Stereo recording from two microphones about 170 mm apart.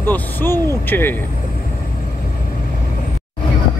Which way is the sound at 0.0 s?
10° left (ahead or behind).